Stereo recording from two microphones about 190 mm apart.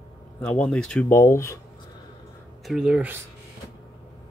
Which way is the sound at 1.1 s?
15° left (ahead or behind).